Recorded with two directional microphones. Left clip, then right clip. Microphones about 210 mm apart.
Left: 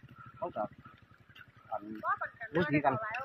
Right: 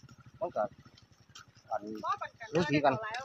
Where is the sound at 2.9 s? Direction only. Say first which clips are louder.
Left 1 dB; 40° left (ahead or behind).